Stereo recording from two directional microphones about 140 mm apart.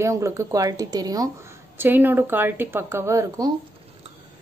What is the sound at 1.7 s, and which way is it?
Speech, 15° right (ahead or behind).